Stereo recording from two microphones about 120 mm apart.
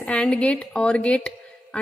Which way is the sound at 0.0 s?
10° left (ahead or behind).